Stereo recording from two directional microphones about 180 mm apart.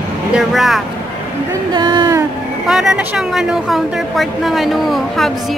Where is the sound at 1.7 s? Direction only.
25° right (ahead or behind).